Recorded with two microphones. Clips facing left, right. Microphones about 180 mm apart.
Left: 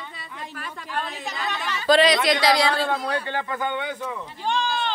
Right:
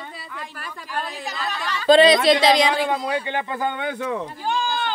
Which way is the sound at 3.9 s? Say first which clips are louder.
Right 6 dB; 70° right (ahead or behind).